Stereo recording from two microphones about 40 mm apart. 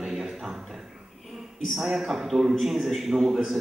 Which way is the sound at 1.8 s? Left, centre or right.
Centre.